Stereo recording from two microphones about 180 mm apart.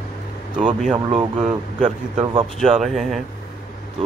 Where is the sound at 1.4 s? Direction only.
40° right (ahead or behind).